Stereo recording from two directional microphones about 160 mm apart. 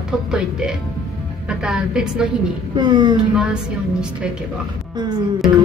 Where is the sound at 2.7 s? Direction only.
30° right (ahead or behind).